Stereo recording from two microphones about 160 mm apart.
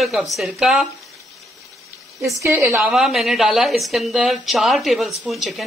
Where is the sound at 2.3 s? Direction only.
20° right (ahead or behind).